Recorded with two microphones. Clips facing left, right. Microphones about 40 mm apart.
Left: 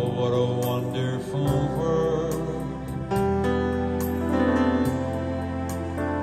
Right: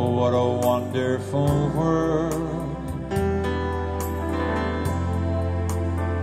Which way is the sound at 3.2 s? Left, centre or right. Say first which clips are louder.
Left 3 dB; right.